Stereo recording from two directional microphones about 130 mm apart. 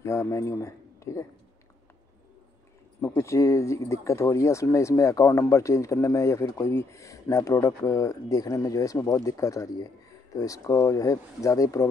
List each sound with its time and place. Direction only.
0.0 s a man's voice: 25° left (ahead or behind)
3.0 s speech: 25° left (ahead or behind)